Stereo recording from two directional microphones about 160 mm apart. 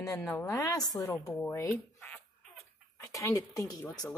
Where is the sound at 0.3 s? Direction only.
15° left (ahead or behind).